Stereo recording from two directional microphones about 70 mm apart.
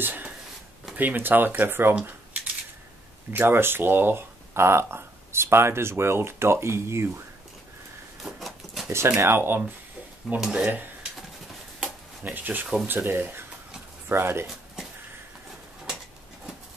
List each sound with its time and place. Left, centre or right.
0.0 s speech: right
3.3 s speech: right
8.2 s a sound: centre
8.9 s speech: right
10.4 s speech: centre
10.7 s a sound: right
12.2 s speech: right